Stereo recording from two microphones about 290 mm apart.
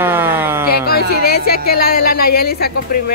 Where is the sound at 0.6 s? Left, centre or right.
Left.